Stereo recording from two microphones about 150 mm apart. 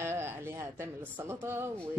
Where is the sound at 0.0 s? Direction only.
15° right (ahead or behind).